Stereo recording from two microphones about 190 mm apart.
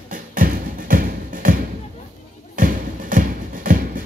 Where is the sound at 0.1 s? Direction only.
45° right (ahead or behind).